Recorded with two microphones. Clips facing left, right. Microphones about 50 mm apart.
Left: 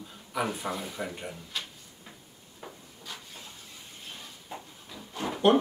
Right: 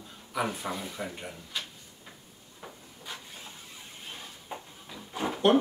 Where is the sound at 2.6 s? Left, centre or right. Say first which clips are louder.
Left 1 dB; centre.